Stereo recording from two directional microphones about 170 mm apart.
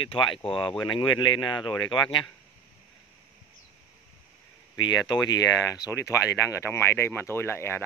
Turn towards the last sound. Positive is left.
turn(degrees=15)  # may be behind; listen again after turning